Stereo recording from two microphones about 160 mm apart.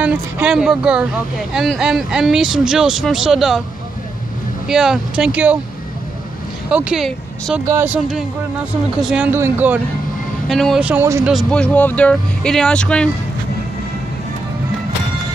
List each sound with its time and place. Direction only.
0.0 s speech: 10° right (ahead or behind)
4.6 s speech: 5° right (ahead or behind)
6.7 s speech: 5° right (ahead or behind)
7.6 s speech: 20° right (ahead or behind)
7.9 s speech: 5° right (ahead or behind)
10.5 s speech: centre (ahead or behind)
11.5 s speech: 10° left (ahead or behind)